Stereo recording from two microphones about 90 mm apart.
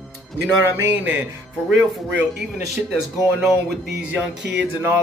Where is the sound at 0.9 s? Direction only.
20° right (ahead or behind).